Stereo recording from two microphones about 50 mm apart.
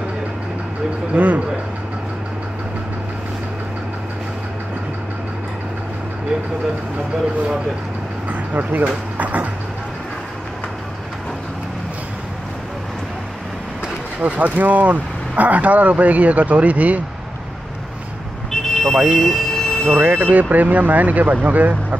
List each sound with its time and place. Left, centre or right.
1.1 s speech: right
8.3 s vehicle: right
9.2 s speech: right
14.2 s speech: right
18.5 s vehicle: centre
18.9 s speech: centre
19.5 s a sound: centre
19.9 s speech: right